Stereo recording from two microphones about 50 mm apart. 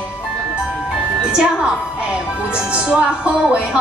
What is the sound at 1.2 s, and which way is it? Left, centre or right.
A woman's voice, centre.